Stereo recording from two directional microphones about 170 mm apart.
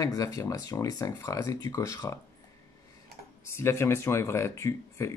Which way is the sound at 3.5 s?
15° left (ahead or behind).